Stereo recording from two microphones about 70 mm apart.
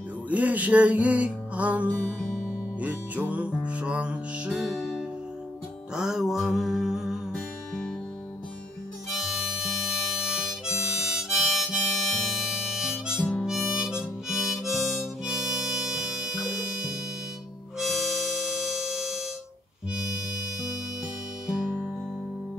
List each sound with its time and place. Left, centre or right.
0.3 s music: right
4.6 s music: centre
5.9 s a sound: centre
7.3 s music: centre
9.1 s harmonica: centre
13.2 s harmonica: centre
13.5 s harmonica: centre